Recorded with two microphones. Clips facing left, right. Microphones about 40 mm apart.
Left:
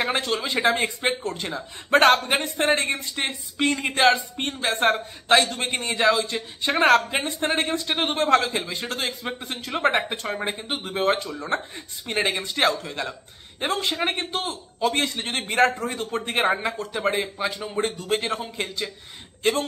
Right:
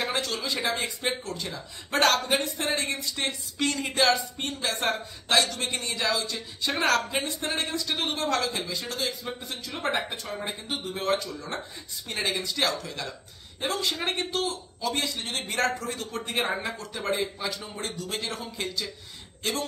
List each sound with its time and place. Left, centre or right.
0.0 s speech: left
3.2 s speech: left